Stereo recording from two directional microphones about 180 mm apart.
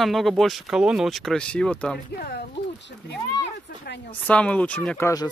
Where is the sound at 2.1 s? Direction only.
65° left (ahead or behind).